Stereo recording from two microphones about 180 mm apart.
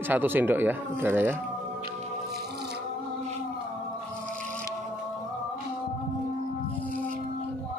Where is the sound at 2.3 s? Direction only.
60° right (ahead or behind).